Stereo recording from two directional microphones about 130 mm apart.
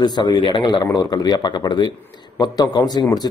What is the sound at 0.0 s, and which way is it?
A man's voice, 30° left (ahead or behind).